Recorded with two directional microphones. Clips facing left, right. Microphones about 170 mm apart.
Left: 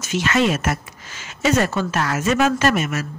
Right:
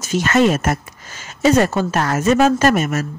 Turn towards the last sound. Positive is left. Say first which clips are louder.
# right 4 dB
turn(degrees=-40)  # may be behind; listen again after turning